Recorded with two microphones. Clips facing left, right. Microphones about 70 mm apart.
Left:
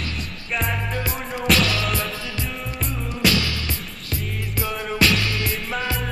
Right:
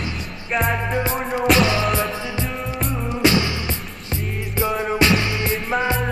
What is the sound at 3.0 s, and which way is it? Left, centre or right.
Music, right.